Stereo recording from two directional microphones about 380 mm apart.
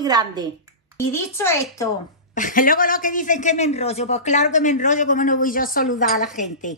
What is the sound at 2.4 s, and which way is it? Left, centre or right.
A man's voice, left.